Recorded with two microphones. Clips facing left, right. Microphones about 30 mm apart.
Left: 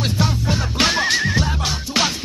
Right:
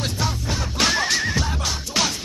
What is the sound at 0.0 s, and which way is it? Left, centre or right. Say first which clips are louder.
Music: left 4 dB; left.